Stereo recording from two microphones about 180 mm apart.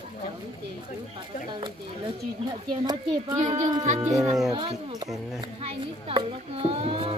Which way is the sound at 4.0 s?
20° right (ahead or behind).